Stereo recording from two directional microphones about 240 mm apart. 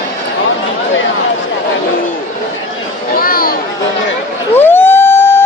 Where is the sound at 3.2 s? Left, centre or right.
Left.